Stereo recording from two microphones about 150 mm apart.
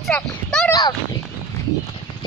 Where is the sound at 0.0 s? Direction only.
5° left (ahead or behind).